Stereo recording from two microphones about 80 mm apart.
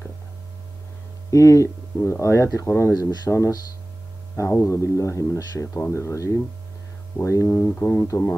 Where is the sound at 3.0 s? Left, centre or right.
Left.